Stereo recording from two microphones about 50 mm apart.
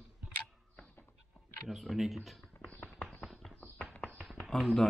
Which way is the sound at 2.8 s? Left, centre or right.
Left.